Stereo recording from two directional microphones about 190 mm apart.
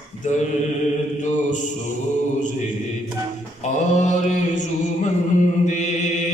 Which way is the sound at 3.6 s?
40° left (ahead or behind).